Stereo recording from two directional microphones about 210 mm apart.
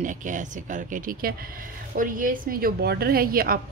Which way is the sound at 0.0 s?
35° right (ahead or behind).